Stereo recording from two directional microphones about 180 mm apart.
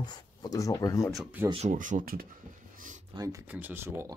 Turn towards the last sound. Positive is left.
turn(degrees=-15)  # may be behind; listen again after turning